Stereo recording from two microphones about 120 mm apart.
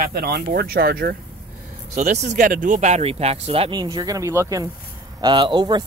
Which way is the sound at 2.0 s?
80° right.